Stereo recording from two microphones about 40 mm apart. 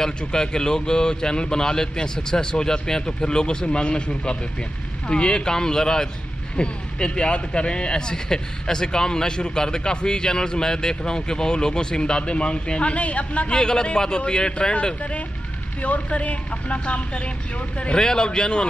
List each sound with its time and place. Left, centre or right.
0.2 s speech: centre
13.6 s speech: centre
17.9 s speech: centre